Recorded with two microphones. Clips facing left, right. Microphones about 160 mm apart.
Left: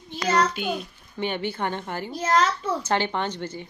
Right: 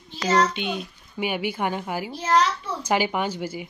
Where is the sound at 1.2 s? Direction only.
10° right (ahead or behind).